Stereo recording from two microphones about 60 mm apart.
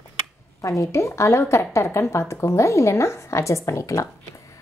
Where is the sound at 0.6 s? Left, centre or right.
Left.